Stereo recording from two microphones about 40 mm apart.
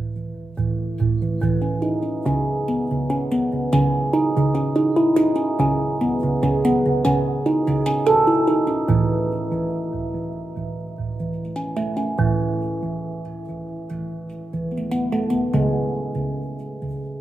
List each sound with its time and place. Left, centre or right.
1.0 s music: centre
11.5 s music: centre
14.5 s music: centre